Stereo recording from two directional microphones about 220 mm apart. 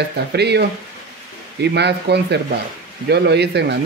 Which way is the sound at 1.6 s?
50° right (ahead or behind).